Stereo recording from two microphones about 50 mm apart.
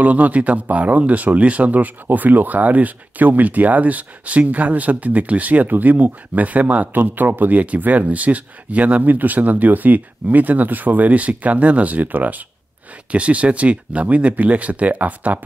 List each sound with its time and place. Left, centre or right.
0.0 s speech: right